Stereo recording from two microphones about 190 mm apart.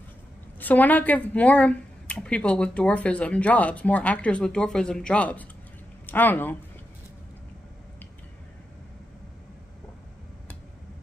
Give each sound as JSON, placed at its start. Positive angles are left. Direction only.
{"t": 0.6, "sound": "a woman's voice", "side_deg": 10}